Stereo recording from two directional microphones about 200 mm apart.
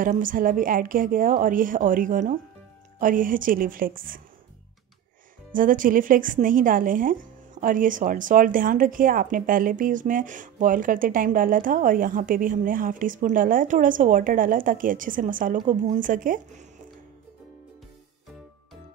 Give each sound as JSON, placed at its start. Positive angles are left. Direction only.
{"t": 0.0, "sound": "speech", "side_deg": -40}
{"t": 5.5, "sound": "speech", "side_deg": -45}